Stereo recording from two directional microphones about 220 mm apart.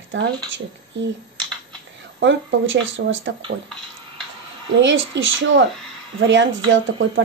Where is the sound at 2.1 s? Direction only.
55° right (ahead or behind).